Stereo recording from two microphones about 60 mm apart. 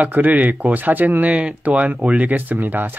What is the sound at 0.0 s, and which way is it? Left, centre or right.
Speech, right.